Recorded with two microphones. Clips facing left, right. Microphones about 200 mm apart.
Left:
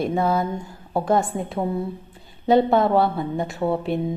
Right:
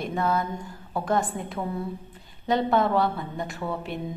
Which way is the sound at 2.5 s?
30° left (ahead or behind).